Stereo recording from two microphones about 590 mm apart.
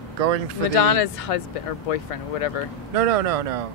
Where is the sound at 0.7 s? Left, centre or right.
Left.